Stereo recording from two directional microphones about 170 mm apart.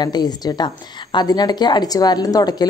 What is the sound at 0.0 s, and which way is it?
Speech, 25° left (ahead or behind).